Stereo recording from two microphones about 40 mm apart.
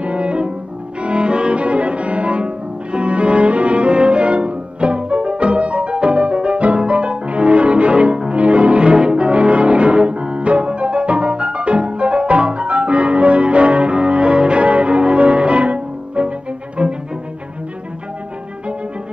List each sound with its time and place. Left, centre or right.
0.0 s cello: right